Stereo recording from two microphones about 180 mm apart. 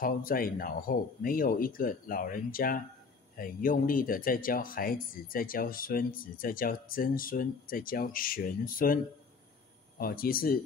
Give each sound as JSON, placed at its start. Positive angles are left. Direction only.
{"t": 0.0, "sound": "speech", "side_deg": 50}